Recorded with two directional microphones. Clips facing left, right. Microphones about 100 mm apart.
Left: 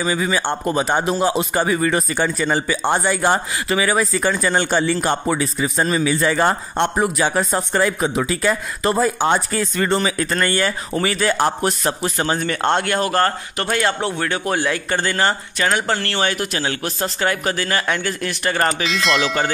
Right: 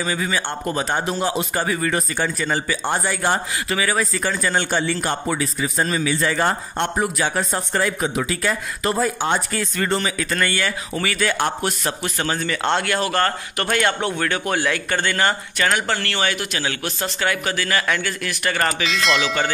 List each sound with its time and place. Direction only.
0.0 s a man's voice: 20° left (ahead or behind)
10.4 s speech: 40° left (ahead or behind)
12.4 s a man's voice: 40° left (ahead or behind); by 16.0 s 25° left (ahead or behind)
16.0 s speech: 35° left (ahead or behind)
18.9 s a sound: centre (ahead or behind)